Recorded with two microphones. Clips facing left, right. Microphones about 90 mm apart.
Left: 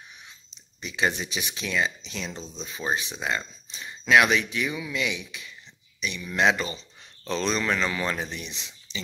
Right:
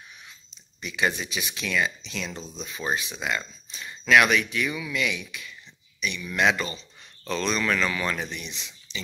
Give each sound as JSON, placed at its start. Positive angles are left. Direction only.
{"t": 0.7, "sound": "speech", "side_deg": 25}